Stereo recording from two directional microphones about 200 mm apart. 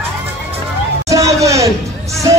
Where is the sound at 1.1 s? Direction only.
15° right (ahead or behind).